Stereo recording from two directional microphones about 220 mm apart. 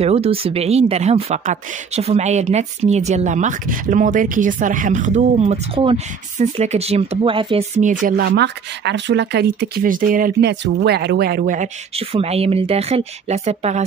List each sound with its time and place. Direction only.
0.0 s speech: 25° right (ahead or behind)